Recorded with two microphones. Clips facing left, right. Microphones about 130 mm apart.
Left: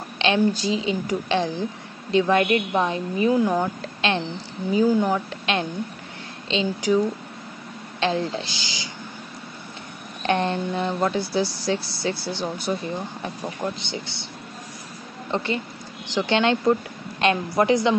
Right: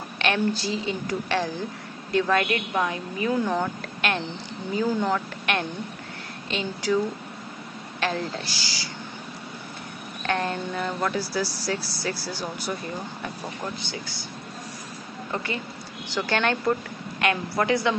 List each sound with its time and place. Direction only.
0.2 s a woman's voice: 20° left (ahead or behind)
8.0 s speech: 20° left (ahead or behind)
10.2 s speech: 25° left (ahead or behind)
13.8 s speech: 25° left (ahead or behind)
15.3 s speech: 25° left (ahead or behind)